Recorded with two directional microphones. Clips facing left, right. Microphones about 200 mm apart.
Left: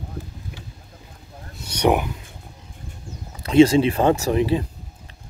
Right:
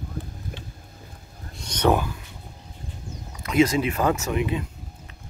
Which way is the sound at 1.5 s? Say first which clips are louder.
Left 2 dB; 10° left (ahead or behind).